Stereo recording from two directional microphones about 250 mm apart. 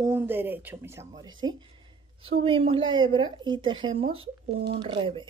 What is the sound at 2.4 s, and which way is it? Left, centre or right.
Speech, right.